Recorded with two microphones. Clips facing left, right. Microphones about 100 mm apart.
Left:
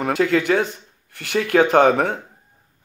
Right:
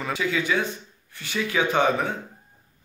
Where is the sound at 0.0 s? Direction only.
60° left (ahead or behind).